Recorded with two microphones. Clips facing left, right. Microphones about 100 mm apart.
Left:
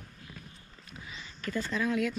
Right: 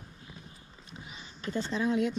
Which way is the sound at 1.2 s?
25° right (ahead or behind).